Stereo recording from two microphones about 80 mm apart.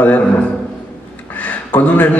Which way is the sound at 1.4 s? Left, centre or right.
Centre.